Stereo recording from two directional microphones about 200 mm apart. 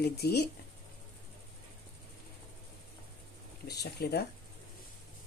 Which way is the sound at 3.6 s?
55° left (ahead or behind).